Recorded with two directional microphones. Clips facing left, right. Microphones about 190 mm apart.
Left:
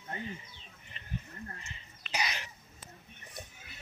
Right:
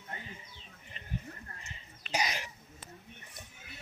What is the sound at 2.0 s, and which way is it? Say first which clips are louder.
Throat clearing: right 2 dB; 45° right (ahead or behind).